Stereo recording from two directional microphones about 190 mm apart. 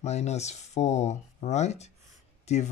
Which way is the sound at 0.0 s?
35° left (ahead or behind).